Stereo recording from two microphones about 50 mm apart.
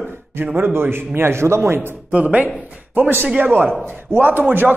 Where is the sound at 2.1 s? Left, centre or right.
Right.